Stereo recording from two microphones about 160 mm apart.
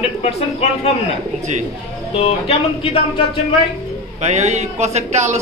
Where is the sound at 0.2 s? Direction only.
40° left (ahead or behind).